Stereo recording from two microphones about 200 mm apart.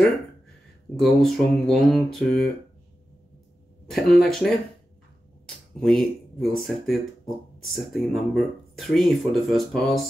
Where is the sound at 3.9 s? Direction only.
Centre (ahead or behind).